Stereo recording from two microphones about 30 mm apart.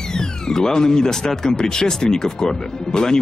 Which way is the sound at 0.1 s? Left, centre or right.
Left.